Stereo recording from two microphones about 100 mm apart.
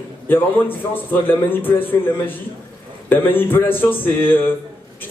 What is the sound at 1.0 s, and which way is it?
A man's voice, 20° left (ahead or behind).